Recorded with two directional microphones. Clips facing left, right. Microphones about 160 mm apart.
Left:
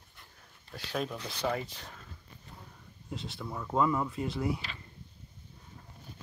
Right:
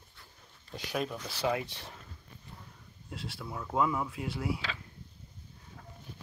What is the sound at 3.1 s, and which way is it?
Speech, centre (ahead or behind).